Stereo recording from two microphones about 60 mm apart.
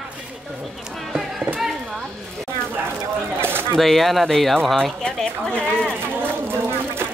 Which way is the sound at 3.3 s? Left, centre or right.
Right.